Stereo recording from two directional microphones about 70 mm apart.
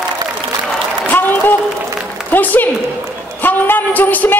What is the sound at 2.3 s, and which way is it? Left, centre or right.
Music, left.